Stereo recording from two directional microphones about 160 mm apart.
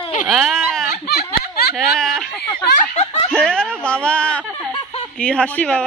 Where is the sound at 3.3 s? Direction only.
5° left (ahead or behind).